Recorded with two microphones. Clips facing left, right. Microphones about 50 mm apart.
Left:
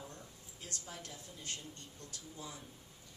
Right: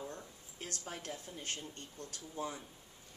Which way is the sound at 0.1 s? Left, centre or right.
Right.